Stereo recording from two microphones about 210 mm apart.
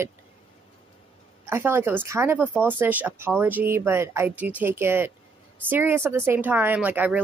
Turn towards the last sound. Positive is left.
turn(degrees=-5)  # may be behind; listen again after turning